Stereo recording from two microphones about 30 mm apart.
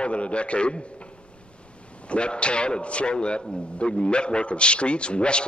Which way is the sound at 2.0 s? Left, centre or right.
Left.